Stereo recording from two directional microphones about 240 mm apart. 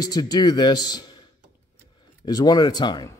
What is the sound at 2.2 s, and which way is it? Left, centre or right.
Speech, centre.